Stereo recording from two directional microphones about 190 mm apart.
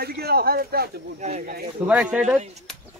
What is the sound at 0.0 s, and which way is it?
Speech, 55° right (ahead or behind).